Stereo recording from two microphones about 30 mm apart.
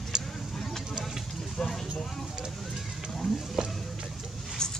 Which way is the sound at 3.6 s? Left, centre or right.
Right.